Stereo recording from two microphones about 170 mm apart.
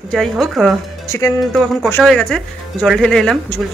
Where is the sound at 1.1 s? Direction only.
15° left (ahead or behind).